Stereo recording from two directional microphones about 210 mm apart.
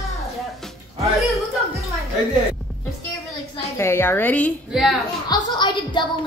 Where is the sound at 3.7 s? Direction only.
10° left (ahead or behind).